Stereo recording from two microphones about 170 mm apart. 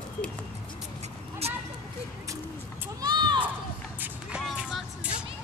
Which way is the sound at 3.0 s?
25° right (ahead or behind).